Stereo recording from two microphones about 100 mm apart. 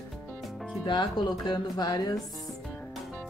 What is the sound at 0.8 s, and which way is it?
Speech, 50° left (ahead or behind).